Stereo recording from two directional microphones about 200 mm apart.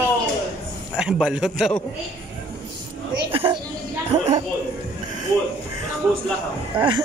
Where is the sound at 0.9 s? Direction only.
5° right (ahead or behind).